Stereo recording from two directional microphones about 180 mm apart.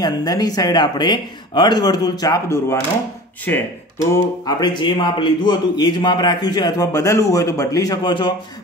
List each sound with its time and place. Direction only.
0.0 s speech: 20° left (ahead or behind)